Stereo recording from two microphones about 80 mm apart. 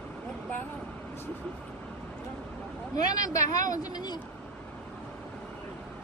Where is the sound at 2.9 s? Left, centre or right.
Left.